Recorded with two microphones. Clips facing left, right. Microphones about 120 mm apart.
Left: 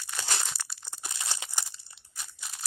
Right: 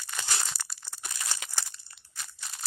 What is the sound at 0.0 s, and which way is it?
Crumpling, centre (ahead or behind).